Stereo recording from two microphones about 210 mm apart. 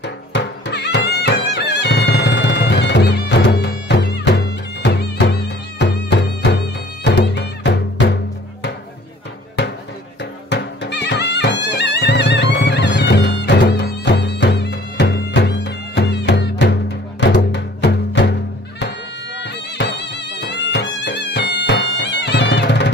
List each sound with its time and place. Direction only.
0.0 s music: 55° left (ahead or behind)
10.5 s music: 55° left (ahead or behind)